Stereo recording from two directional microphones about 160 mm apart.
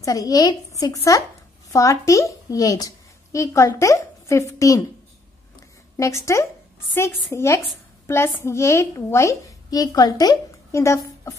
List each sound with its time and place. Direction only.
0.0 s a woman's voice: 20° left (ahead or behind)
5.9 s a woman's voice: 20° left (ahead or behind)